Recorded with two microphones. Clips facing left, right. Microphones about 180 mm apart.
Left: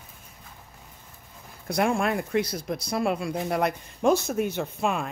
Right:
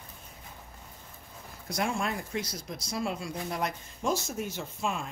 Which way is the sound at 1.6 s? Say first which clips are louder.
Left 7 dB; 55° left (ahead or behind).